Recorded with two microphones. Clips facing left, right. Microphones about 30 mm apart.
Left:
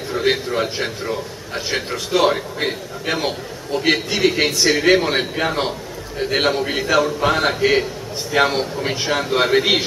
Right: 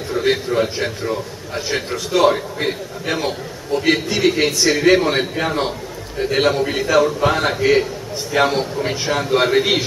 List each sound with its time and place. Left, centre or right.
0.1 s a man's voice: centre